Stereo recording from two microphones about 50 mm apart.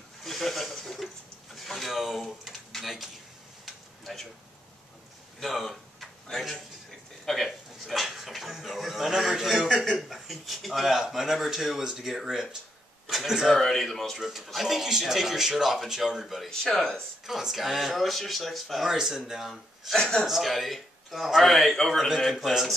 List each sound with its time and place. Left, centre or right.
0.2 s speech: centre
4.0 s speech: centre
5.4 s speech: centre
16.4 s speech: centre
17.3 s speech: centre
19.5 s speech: centre
20.0 s speech: centre
20.2 s speech: centre